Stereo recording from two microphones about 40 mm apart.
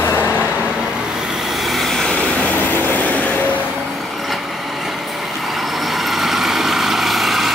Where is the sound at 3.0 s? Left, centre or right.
Left.